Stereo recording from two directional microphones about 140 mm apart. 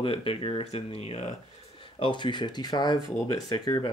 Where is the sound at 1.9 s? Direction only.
35° left (ahead or behind).